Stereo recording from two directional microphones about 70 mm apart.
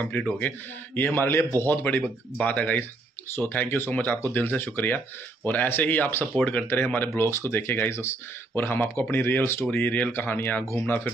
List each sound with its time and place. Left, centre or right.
0.0 s speech: left
1.9 s speech: left
3.3 s speech: left
9.7 s speech: left